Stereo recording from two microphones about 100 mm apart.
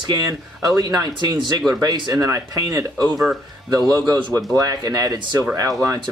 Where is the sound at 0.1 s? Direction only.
40° right (ahead or behind).